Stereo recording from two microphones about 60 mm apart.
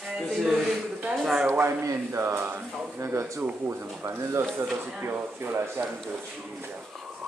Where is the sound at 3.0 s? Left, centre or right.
Right.